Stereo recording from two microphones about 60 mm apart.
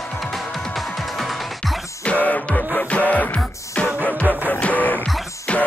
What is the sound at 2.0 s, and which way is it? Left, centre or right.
Music, left.